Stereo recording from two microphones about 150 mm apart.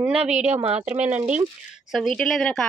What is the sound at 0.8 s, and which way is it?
Speech, 10° right (ahead or behind).